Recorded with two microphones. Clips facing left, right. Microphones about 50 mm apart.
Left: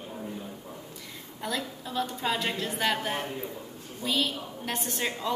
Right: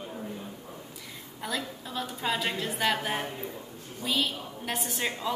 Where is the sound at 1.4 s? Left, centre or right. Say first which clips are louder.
Left 1 dB; centre.